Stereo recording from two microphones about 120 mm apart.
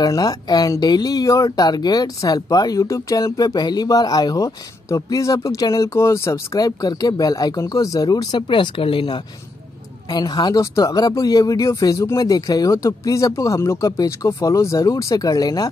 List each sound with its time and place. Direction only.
0.0 s speech: 30° left (ahead or behind)